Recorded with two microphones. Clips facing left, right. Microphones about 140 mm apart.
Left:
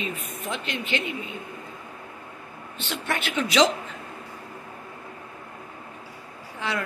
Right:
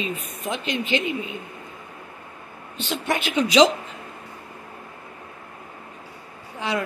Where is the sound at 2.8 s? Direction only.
15° right (ahead or behind).